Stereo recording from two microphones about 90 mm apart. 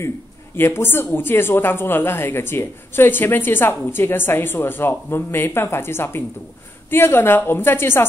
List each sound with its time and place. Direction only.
0.6 s speech: 25° left (ahead or behind)